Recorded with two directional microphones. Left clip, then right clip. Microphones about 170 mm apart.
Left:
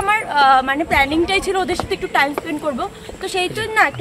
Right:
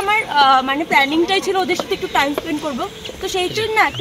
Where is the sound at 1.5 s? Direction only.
15° left (ahead or behind).